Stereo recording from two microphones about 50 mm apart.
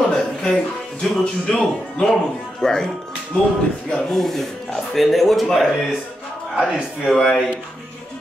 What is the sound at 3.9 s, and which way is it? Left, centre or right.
Speech, centre.